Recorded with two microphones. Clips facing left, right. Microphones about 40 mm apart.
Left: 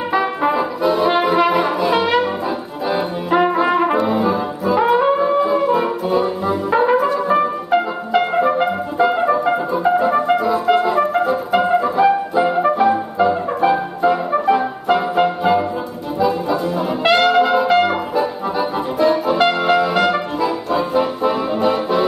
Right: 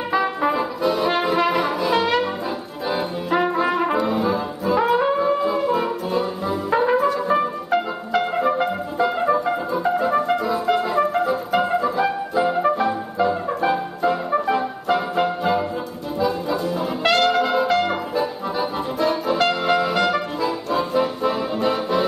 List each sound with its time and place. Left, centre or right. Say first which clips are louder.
0.1 s brass instrument: left 3 dB; centre
8.2 s music: left 4 dB; centre
16.2 s brass instrument: left 4 dB; centre